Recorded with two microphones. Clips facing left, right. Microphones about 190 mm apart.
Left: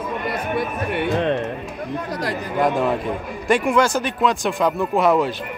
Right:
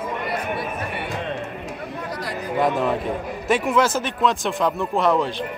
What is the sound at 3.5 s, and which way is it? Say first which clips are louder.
Speech: left 2 dB; centre (ahead or behind).